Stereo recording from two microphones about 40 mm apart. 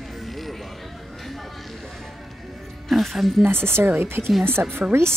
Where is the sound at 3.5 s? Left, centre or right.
Right.